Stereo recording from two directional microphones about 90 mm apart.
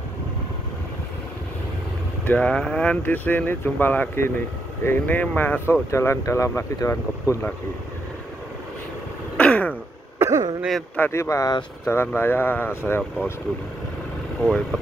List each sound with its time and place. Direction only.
2.2 s speech: 15° left (ahead or behind)
5.9 s speech: 30° left (ahead or behind)
9.4 s throat clearing: 15° left (ahead or behind)
10.1 s cough: 30° right (ahead or behind)
11.0 s speech: 30° left (ahead or behind)